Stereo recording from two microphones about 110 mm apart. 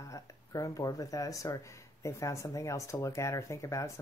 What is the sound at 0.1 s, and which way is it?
Speech, 30° left (ahead or behind).